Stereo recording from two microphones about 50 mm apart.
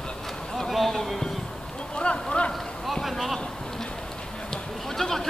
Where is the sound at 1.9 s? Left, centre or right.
Left.